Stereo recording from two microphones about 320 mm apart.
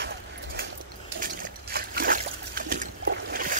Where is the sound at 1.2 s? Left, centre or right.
Right.